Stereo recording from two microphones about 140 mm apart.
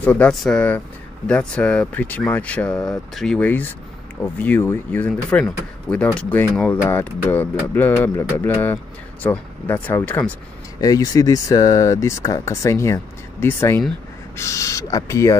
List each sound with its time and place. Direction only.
0.0 s speech: 10° left (ahead or behind)
10.8 s speech: 25° left (ahead or behind)